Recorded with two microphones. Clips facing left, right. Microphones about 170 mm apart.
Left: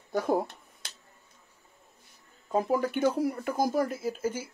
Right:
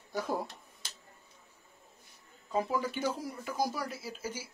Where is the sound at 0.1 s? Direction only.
55° left (ahead or behind).